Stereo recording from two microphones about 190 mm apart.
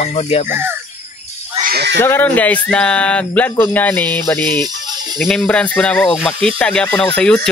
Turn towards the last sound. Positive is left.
turn(degrees=5)  # may be behind; listen again after turning